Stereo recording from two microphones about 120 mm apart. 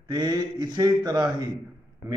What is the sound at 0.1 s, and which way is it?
A man's voice, 30° right (ahead or behind).